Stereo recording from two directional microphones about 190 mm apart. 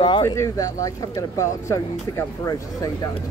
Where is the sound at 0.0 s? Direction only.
25° left (ahead or behind).